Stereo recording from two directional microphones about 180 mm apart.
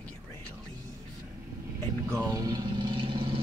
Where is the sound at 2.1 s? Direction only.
20° right (ahead or behind).